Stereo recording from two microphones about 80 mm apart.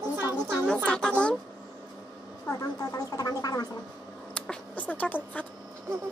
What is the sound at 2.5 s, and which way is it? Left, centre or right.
Speech, left.